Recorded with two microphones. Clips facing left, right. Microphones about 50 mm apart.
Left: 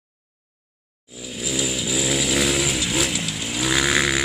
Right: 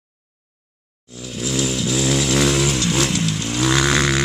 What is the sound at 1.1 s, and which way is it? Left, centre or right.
Vehicle, centre.